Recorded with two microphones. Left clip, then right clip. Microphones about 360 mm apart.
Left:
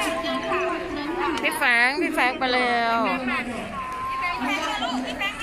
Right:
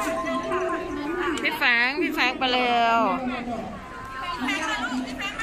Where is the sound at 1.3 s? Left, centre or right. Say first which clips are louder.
Left 1 dB; centre.